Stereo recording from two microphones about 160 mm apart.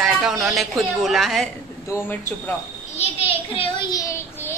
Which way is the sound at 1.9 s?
15° left (ahead or behind).